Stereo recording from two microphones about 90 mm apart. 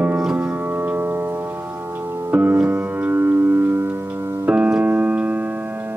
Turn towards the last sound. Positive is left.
turn(degrees=-15)  # may be behind; listen again after turning